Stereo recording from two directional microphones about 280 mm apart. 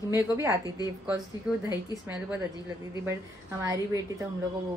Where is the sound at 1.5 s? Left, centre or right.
Centre.